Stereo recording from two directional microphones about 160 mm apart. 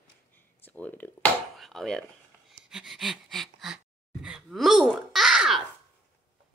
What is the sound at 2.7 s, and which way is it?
Speech, centre (ahead or behind).